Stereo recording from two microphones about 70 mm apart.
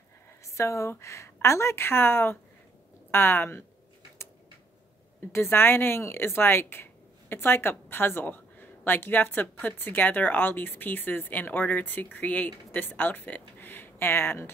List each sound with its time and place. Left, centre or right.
0.5 s a woman's voice: left
5.3 s speech: left